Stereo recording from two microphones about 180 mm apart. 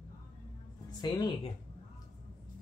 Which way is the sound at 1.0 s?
25° left (ahead or behind).